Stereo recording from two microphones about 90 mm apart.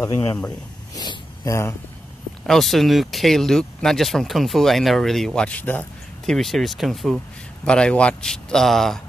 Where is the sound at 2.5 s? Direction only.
Centre (ahead or behind).